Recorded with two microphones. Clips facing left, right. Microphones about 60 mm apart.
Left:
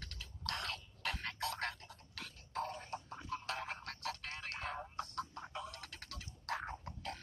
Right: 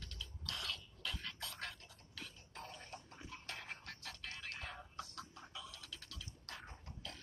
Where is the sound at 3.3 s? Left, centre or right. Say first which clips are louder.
Left 8 dB; left.